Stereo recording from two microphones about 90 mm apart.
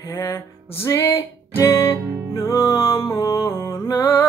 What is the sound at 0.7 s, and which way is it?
Music, 30° left (ahead or behind).